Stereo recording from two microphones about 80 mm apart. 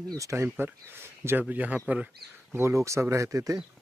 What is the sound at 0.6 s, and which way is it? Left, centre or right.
Speech, right.